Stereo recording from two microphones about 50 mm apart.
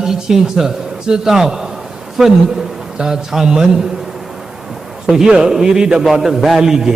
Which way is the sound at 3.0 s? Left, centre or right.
Centre.